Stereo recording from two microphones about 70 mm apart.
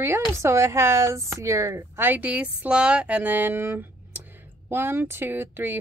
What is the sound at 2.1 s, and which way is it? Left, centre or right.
Speech, right.